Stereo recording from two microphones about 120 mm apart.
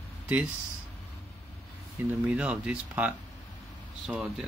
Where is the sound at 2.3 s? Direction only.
10° right (ahead or behind).